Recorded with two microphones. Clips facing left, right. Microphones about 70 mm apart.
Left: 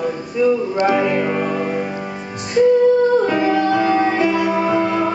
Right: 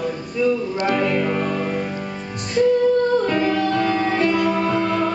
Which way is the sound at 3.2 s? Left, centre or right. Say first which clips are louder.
Left 3 dB; centre.